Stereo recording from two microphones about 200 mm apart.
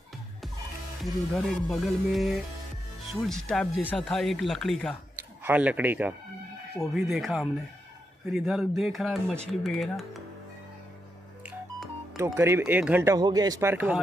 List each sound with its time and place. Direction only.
1.0 s speech: centre (ahead or behind)
5.1 s speech: 10° right (ahead or behind)
11.4 s speech: 5° right (ahead or behind)